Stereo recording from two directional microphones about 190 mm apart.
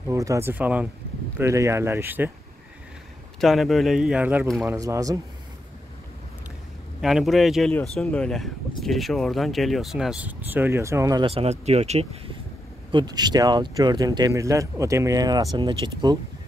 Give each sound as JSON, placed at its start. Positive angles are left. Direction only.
{"t": 0.1, "sound": "speech", "side_deg": -15}
{"t": 3.3, "sound": "speech", "side_deg": 0}
{"t": 7.0, "sound": "speech", "side_deg": 0}
{"t": 11.2, "sound": "speech", "side_deg": -35}
{"t": 12.9, "sound": "speech", "side_deg": -20}